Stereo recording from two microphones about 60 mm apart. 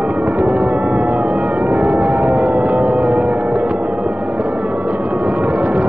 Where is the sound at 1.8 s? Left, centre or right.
Centre.